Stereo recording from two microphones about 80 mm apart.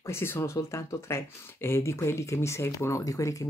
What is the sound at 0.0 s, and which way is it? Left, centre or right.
Speech, left.